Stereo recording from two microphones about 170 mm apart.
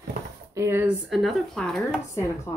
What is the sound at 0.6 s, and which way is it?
Speech, 15° right (ahead or behind).